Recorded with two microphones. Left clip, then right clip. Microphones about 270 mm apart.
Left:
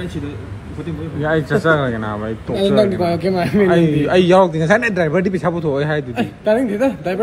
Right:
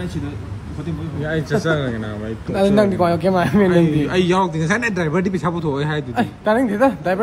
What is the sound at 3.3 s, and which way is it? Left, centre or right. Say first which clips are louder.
A man's voice: left 1 dB; centre.